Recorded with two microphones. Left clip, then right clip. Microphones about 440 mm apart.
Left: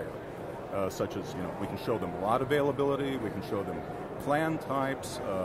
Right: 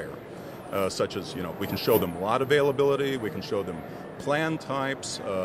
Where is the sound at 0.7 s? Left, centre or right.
Right.